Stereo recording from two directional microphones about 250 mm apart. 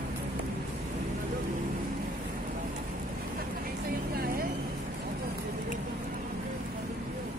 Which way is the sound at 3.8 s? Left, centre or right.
Right.